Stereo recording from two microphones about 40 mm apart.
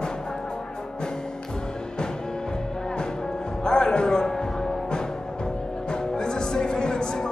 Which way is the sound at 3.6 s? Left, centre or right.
Centre.